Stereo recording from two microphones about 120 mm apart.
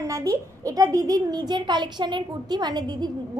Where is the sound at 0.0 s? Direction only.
30° right (ahead or behind).